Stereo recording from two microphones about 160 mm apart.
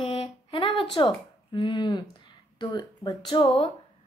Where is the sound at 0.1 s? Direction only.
30° left (ahead or behind).